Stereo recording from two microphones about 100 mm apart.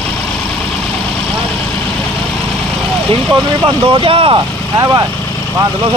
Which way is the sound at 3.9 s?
65° right (ahead or behind).